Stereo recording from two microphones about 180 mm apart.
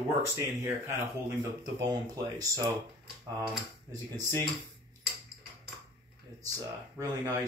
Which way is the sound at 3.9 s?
20° right (ahead or behind).